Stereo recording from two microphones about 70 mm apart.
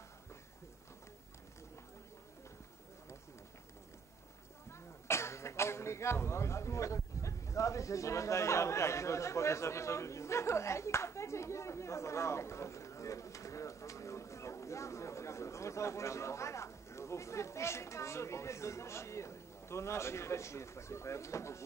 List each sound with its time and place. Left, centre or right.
4.6 s speech: left